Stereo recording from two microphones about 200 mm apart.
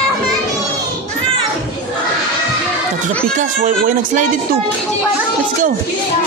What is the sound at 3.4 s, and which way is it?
Speech, 45° right (ahead or behind).